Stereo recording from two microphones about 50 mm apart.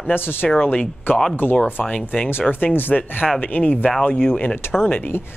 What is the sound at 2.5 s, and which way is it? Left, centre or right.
Speech, left.